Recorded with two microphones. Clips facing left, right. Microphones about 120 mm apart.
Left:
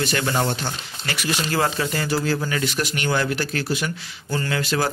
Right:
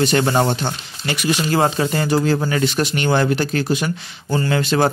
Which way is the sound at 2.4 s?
35° right (ahead or behind).